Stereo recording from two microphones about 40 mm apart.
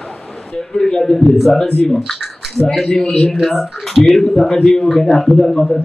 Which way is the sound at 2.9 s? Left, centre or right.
Centre.